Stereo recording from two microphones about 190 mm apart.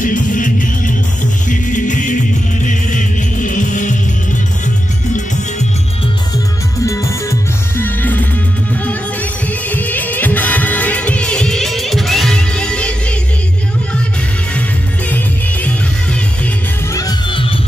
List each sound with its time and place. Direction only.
0.0 s music: 45° left (ahead or behind)
5.1 s music: 40° left (ahead or behind)
6.9 s music: 15° left (ahead or behind)
15.0 s music: 10° left (ahead or behind)
16.9 s music: 20° left (ahead or behind)